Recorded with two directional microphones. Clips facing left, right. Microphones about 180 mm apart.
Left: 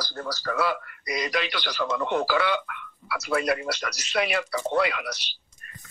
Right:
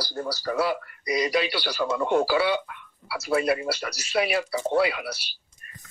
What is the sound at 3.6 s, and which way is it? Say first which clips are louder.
Speech: right 1 dB; 10° right (ahead or behind).